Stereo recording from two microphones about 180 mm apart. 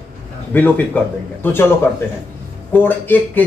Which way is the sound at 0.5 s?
10° left (ahead or behind).